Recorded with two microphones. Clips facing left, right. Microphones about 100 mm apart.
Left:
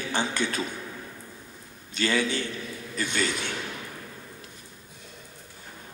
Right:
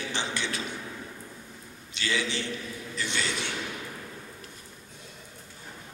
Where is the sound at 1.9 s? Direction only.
45° left (ahead or behind).